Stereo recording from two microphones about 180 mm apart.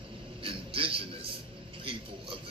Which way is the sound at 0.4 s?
30° right (ahead or behind).